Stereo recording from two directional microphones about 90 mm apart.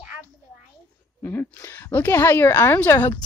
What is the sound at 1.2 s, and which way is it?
Speech, 25° left (ahead or behind).